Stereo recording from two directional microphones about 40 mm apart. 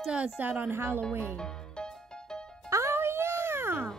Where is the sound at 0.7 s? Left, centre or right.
Right.